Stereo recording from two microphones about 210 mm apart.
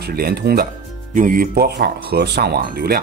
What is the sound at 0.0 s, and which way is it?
Speech, 50° right (ahead or behind).